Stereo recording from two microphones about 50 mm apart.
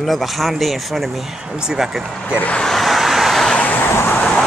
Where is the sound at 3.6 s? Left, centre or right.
Left.